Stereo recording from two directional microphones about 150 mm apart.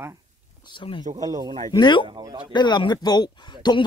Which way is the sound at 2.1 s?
30° right (ahead or behind).